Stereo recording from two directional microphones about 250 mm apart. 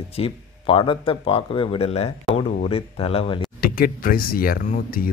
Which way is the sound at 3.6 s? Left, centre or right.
Left.